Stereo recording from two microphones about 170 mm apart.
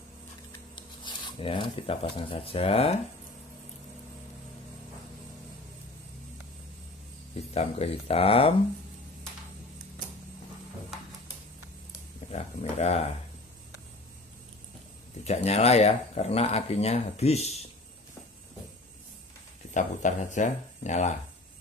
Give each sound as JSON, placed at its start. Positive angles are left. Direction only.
{"t": 0.7, "sound": "speech", "side_deg": 30}
{"t": 7.3, "sound": "speech", "side_deg": 35}
{"t": 12.3, "sound": "a sound", "side_deg": 40}
{"t": 15.2, "sound": "speech", "side_deg": 40}
{"t": 19.7, "sound": "speech", "side_deg": 45}